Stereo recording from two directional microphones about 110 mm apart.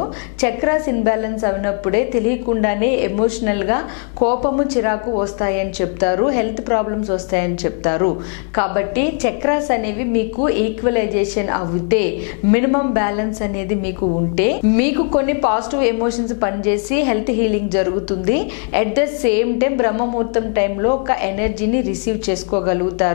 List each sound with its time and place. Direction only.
0.4 s a woman's voice: 15° left (ahead or behind)